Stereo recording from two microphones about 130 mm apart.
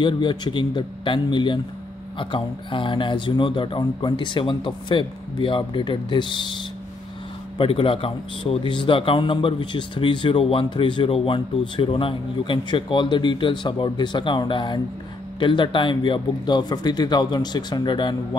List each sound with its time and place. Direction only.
0.0 s a man's voice: 35° left (ahead or behind)
7.5 s a man's voice: 45° left (ahead or behind)